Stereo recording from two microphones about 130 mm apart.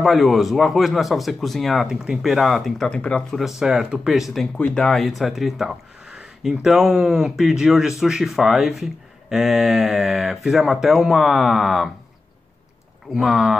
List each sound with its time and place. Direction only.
0.0 s speech: centre (ahead or behind)
13.1 s speech: centre (ahead or behind)